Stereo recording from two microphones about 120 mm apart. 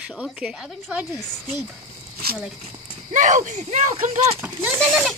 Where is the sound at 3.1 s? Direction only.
90° right.